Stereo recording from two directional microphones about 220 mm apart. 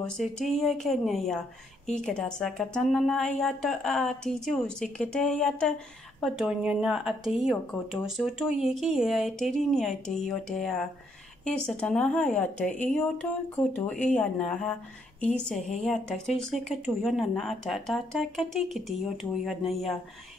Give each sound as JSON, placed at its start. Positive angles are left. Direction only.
{"t": 0.0, "sound": "speech", "side_deg": 0}